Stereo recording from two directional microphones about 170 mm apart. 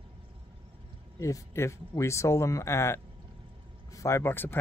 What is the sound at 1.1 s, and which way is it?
Speech, 20° left (ahead or behind).